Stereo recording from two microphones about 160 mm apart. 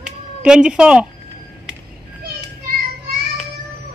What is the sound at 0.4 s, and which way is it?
Speech, 5° right (ahead or behind).